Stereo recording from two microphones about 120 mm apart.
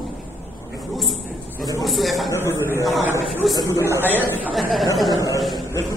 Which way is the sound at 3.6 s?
25° left (ahead or behind).